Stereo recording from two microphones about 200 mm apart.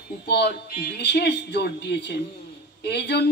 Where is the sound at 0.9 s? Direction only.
55° left (ahead or behind).